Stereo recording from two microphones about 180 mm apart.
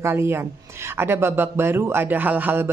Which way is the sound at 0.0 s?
15° right (ahead or behind).